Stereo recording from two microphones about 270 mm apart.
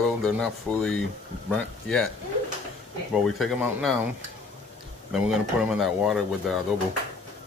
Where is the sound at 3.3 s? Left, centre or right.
Centre.